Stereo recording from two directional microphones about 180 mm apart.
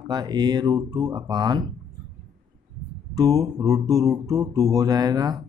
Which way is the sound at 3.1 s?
20° right (ahead or behind).